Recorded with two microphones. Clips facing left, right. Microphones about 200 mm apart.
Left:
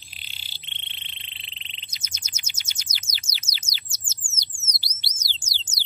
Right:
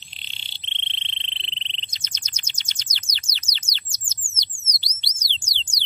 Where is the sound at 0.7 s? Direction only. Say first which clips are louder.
Right 5 dB; 10° left (ahead or behind).